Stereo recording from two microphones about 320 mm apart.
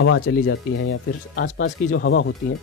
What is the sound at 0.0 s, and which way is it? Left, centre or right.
Speech, left.